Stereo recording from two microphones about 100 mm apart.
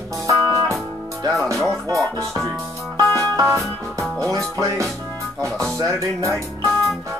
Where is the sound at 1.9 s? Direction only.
30° right (ahead or behind).